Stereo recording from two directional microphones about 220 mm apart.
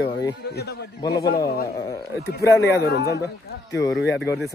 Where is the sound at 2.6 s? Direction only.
50° left (ahead or behind).